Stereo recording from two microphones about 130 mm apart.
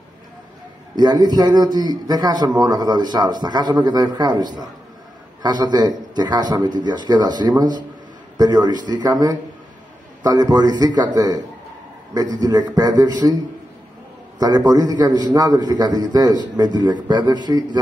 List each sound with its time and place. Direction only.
0.9 s a man's voice: 30° right (ahead or behind)
14.4 s a man's voice: 30° right (ahead or behind)